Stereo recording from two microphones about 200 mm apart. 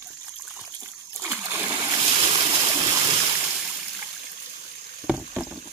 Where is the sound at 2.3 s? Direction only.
25° right (ahead or behind).